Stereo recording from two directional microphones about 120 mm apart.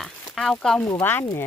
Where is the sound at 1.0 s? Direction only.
15° left (ahead or behind).